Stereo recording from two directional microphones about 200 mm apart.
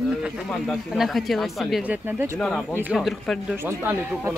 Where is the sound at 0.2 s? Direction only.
Centre (ahead or behind).